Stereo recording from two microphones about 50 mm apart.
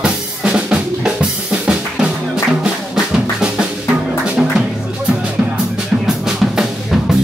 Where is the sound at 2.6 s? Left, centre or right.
Centre.